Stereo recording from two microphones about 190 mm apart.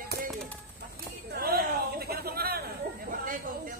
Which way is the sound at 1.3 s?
55° right (ahead or behind).